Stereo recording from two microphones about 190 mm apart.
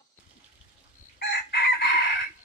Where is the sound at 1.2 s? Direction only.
60° left (ahead or behind).